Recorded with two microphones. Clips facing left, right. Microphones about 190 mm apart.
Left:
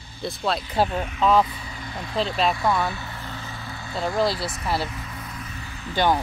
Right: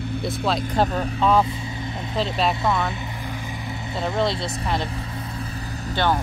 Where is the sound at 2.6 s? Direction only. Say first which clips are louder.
Even; 20° right (ahead or behind).